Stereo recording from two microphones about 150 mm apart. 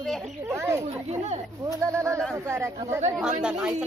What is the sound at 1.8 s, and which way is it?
Speech, 20° right (ahead or behind).